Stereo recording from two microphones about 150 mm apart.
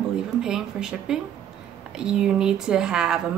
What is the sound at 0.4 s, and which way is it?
Speech, 5° right (ahead or behind).